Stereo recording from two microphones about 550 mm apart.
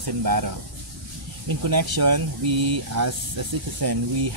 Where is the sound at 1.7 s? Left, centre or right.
Right.